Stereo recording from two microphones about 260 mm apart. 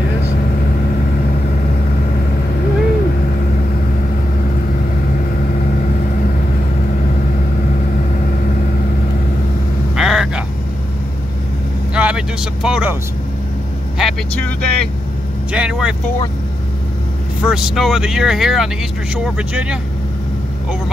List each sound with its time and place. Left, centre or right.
9.9 s vehicle: centre
11.9 s a sound: centre
13.9 s speech: centre
17.5 s speech: centre